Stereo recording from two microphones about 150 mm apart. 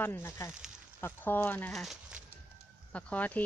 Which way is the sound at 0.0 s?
15° left (ahead or behind).